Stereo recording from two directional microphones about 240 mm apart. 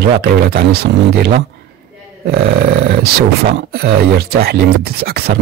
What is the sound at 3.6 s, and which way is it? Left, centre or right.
Speech, right.